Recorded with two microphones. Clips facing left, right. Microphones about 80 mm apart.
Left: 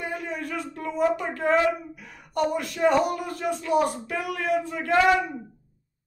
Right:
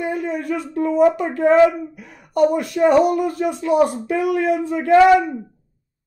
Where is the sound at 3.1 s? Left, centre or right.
Right.